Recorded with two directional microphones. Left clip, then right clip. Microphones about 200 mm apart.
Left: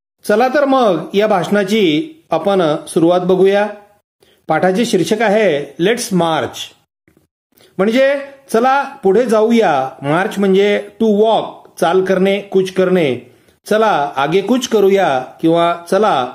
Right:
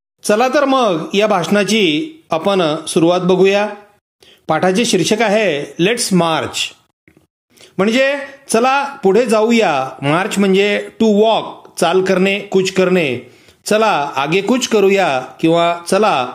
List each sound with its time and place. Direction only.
0.2 s speech: 25° right (ahead or behind)
7.7 s speech: 25° right (ahead or behind)